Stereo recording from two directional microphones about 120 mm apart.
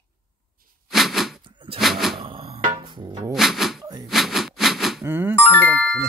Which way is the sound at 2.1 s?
50° right (ahead or behind).